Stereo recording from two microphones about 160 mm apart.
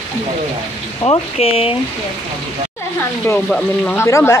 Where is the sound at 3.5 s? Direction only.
5° left (ahead or behind).